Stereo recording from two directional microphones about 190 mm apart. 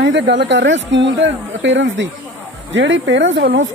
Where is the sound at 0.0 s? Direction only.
70° right (ahead or behind).